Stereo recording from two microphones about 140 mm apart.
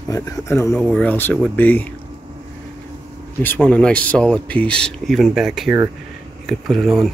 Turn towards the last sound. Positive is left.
turn(degrees=0)  # may be behind; listen again after turning